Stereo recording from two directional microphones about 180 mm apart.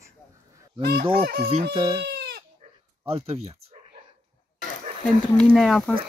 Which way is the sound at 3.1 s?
35° right (ahead or behind).